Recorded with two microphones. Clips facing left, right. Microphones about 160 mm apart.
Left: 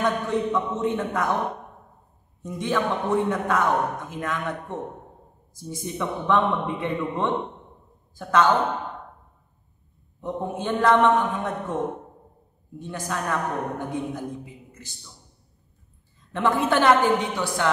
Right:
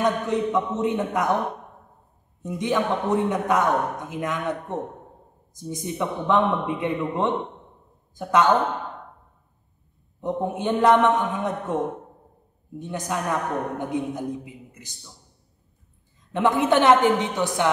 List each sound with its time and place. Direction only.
0.0 s a man's voice: 20° right (ahead or behind)
2.4 s a man's voice: 15° right (ahead or behind)
10.2 s a man's voice: 20° right (ahead or behind)
16.3 s a man's voice: 15° right (ahead or behind)